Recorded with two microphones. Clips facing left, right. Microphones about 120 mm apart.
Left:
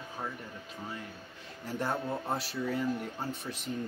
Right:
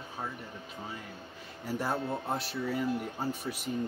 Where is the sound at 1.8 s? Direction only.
Centre (ahead or behind).